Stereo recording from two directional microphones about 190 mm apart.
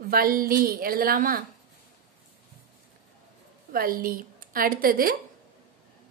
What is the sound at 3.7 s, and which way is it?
A woman's voice, 50° right (ahead or behind).